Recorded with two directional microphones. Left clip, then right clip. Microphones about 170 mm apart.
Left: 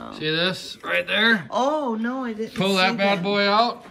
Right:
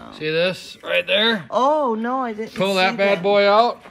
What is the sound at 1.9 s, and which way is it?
Speech, 35° right (ahead or behind).